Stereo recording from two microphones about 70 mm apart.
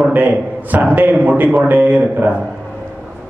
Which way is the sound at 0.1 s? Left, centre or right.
Right.